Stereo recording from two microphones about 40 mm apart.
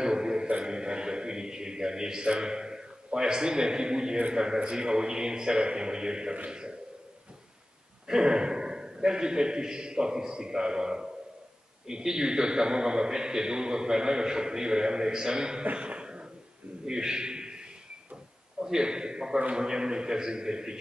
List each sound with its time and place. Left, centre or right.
0.0 s a sound: centre
0.5 s a man's voice: right
8.1 s a man's voice: centre
15.6 s cough: right
16.8 s a sound: centre
18.6 s a man's voice: centre